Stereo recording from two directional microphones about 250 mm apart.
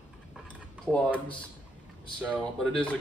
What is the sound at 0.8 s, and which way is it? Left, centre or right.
Speech, centre.